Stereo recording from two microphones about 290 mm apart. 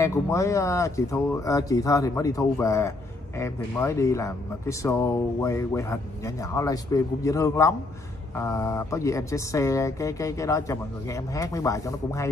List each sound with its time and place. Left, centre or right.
0.0 s speech: centre